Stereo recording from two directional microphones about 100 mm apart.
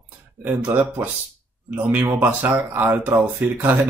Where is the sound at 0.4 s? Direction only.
20° right (ahead or behind).